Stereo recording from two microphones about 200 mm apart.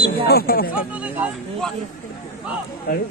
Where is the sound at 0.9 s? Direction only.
5° right (ahead or behind).